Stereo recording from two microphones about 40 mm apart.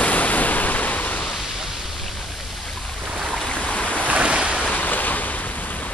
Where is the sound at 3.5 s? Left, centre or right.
Left.